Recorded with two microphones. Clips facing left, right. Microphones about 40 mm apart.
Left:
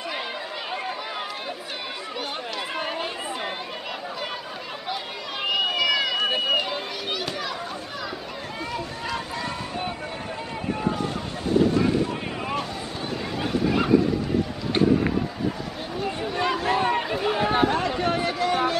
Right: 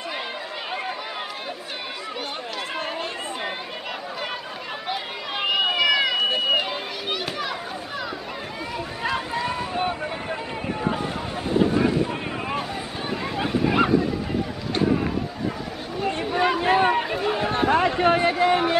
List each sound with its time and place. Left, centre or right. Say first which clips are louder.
5.4 s run: right 2 dB; centre
6.2 s run: right 1 dB; centre
6.5 s run: right 1 dB; centre
8.7 s run: right 5 dB; centre
11.5 s boat: even; centre
13.7 s waves: right 3 dB; centre
16.1 s a sound: right 4 dB; centre
16.6 s run: right 4 dB; right
16.9 s run: right 1 dB; centre
17.7 s a sound: right 5 dB; right